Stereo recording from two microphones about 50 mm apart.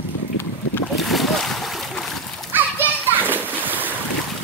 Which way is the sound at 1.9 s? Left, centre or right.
Centre.